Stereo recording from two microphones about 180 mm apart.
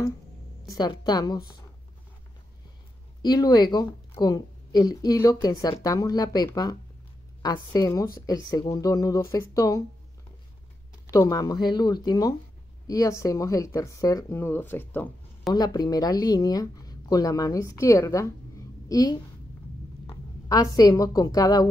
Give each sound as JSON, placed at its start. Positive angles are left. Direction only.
{"t": 0.7, "sound": "speech", "side_deg": 25}
{"t": 3.2, "sound": "speech", "side_deg": 20}
{"t": 11.1, "sound": "speech", "side_deg": 20}
{"t": 15.5, "sound": "a woman's voice", "side_deg": 20}